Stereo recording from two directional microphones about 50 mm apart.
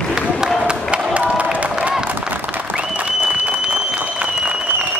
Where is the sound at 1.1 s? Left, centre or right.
Right.